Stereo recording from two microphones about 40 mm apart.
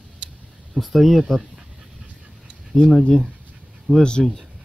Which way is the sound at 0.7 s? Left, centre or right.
Centre.